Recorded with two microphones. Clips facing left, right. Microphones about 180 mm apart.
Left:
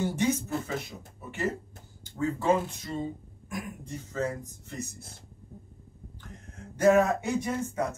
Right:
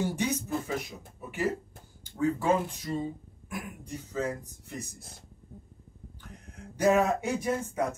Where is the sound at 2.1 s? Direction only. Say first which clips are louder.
Even; 10° right (ahead or behind).